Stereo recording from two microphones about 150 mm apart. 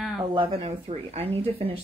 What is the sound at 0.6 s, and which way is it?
Speech, 40° right (ahead or behind).